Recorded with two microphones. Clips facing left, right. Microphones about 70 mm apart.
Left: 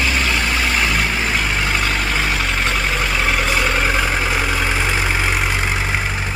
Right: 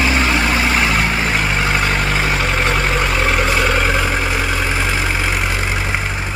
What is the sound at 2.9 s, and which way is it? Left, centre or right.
Vehicle, centre.